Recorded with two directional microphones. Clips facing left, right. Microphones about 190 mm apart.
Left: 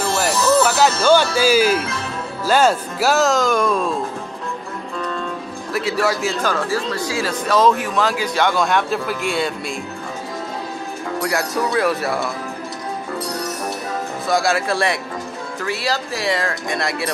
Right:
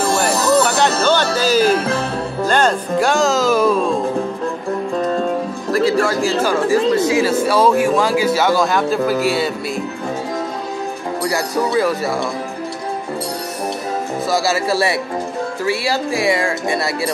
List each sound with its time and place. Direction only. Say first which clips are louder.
0.7 s music: even; 5° left (ahead or behind)
1.0 s speech: left 1 dB; 10° left (ahead or behind)
5.0 s music: right 6 dB; 40° right (ahead or behind)
5.7 s speech: right 4 dB; 5° left (ahead or behind)
6.4 s speech: right 8 dB; 10° right (ahead or behind)
7.4 s speech: left 2 dB; 10° right (ahead or behind)
7.7 s speech: right 8 dB; 45° right (ahead or behind)
8.0 s speech: right 3 dB; 10° right (ahead or behind)
11.7 s speech: right 1 dB; centre (ahead or behind)
14.3 s speech: even; 5° right (ahead or behind)